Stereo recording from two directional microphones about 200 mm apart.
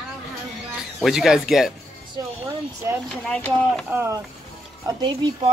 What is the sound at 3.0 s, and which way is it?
Speech, 5° left (ahead or behind).